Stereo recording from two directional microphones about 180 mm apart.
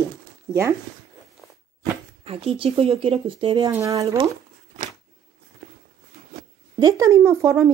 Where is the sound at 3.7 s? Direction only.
15° right (ahead or behind).